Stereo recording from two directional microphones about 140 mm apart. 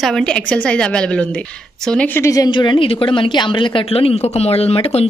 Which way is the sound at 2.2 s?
25° left (ahead or behind).